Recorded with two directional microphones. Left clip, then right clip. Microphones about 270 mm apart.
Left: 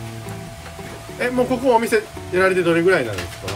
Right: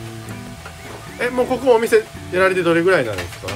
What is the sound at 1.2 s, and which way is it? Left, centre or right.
Speech, centre.